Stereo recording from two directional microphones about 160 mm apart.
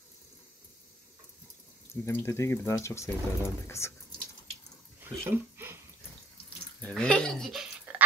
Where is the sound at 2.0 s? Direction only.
15° left (ahead or behind).